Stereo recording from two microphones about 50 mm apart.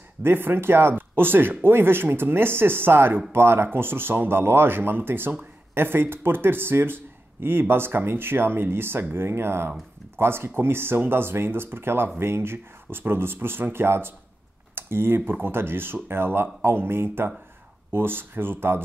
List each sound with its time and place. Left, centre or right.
0.2 s speech: right